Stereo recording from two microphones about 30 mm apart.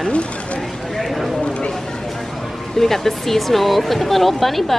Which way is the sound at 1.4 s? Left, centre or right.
Left.